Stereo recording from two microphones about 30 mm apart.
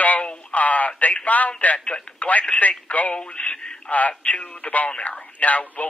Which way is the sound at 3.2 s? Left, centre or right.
Left.